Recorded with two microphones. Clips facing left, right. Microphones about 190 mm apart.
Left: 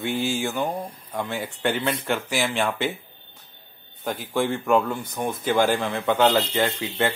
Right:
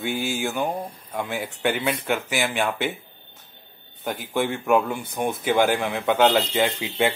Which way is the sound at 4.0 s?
Centre (ahead or behind).